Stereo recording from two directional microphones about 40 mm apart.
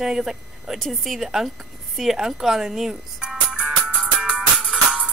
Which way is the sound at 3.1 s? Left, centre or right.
Right.